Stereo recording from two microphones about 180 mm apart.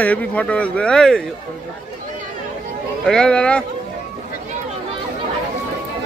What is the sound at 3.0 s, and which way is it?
Speech, 5° left (ahead or behind).